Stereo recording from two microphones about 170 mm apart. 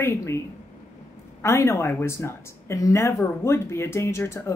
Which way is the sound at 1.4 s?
15° left (ahead or behind).